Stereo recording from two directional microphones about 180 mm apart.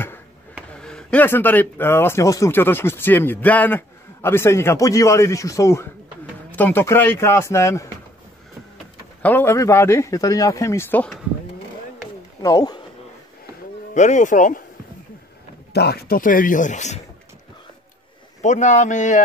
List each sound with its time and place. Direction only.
0.7 s speech: 5° left (ahead or behind)
9.2 s speech: 10° left (ahead or behind)
12.4 s a man's voice: 20° left (ahead or behind)
13.9 s speech: 40° left (ahead or behind)
15.7 s speech: 65° left (ahead or behind); by 17.0 s 40° left (ahead or behind)
18.4 s speech: 40° left (ahead or behind)